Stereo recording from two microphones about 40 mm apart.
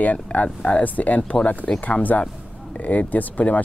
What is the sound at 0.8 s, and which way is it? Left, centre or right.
Speech, left.